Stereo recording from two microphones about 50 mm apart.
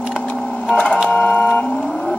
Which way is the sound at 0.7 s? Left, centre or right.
Left.